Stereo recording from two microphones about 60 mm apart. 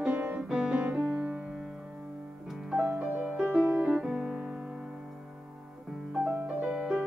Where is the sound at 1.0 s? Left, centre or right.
Right.